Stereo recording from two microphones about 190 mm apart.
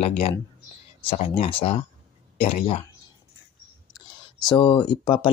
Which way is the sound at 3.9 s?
20° left (ahead or behind).